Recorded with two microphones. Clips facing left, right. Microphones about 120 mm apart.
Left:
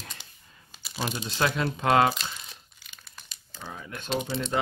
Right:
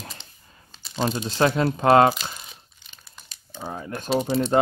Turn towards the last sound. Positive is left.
turn(degrees=-40)  # may be behind; listen again after turning